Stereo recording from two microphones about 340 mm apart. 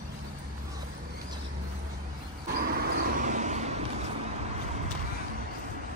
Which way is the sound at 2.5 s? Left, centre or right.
Right.